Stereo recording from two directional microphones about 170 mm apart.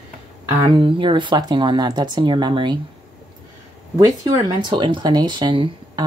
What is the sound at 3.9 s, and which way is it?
Speech, 20° right (ahead or behind).